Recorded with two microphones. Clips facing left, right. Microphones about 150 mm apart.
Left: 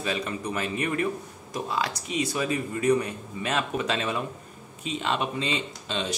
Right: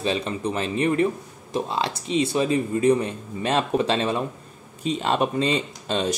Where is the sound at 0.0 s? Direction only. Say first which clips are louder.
Right 5 dB; 25° right (ahead or behind).